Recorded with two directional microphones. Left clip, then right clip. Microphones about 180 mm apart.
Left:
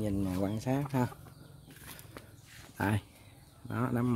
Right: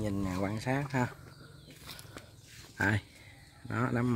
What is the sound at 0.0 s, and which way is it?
Speech, 15° left (ahead or behind).